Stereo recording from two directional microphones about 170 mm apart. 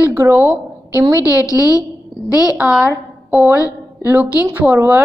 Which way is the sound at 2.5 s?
5° right (ahead or behind).